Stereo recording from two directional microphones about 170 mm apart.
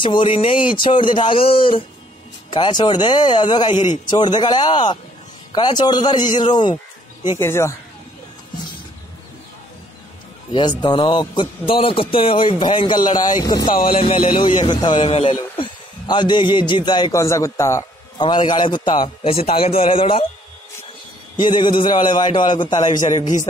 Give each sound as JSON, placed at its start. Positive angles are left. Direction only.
{"t": 0.0, "sound": "a man's voice", "side_deg": 30}
{"t": 7.3, "sound": "speech", "side_deg": 15}
{"t": 10.5, "sound": "a man's voice", "side_deg": 25}
{"t": 21.4, "sound": "speech", "side_deg": 25}